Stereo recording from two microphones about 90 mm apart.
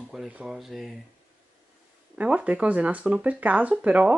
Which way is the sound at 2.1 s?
15° right (ahead or behind).